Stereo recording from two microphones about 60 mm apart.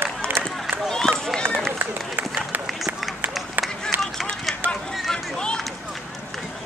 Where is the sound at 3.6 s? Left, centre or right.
Right.